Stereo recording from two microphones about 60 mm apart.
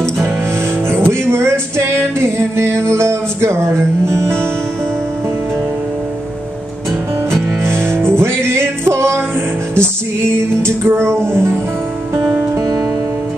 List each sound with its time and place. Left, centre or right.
0.8 s music: right
7.2 s music: right
12.5 s music: right